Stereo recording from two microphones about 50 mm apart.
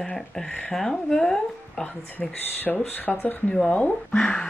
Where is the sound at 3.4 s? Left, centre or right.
Centre.